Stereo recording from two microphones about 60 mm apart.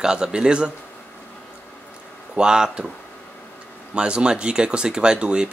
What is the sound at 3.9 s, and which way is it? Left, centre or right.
Speech, centre.